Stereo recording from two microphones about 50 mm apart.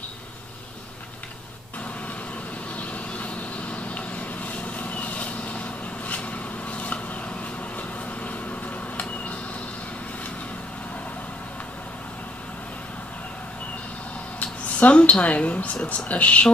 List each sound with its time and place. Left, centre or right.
2.7 s vehicle: left
7.7 s a sound: left
14.4 s speech: left